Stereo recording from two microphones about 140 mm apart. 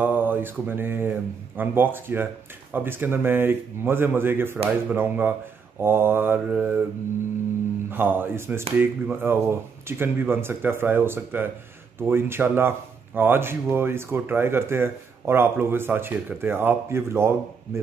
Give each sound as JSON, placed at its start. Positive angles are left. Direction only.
{"t": 0.0, "sound": "mantra", "side_deg": -15}
{"t": 1.6, "sound": "speech", "side_deg": -15}
{"t": 7.9, "sound": "speech", "side_deg": -15}